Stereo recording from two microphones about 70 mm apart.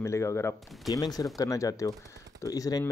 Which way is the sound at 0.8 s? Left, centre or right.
Left.